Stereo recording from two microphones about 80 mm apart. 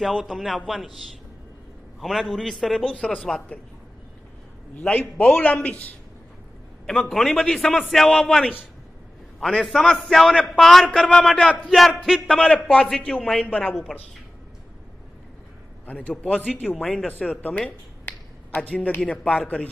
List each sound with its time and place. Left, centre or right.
0.3 s a man's voice: centre
4.7 s a man's voice: centre
6.9 s a man's voice: centre
9.7 s a man's voice: centre
12.5 s speech: centre
15.9 s a man's voice: left